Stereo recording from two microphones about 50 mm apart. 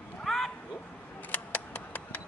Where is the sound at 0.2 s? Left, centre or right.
Centre.